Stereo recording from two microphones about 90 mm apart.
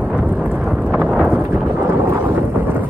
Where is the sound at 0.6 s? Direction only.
5° right (ahead or behind).